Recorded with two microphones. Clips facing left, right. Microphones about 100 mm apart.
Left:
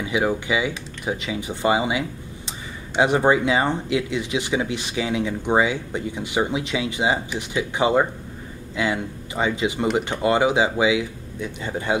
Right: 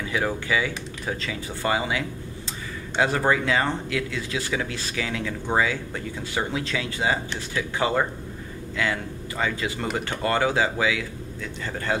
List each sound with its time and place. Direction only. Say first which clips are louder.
0.0 s speech: left 4 dB; 15° left (ahead or behind)